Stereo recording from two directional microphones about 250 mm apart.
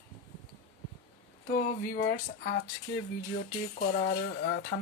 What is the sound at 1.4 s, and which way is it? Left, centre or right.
Speech, left.